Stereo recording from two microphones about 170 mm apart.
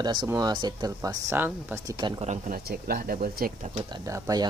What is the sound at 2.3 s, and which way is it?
Speech, 55° right (ahead or behind).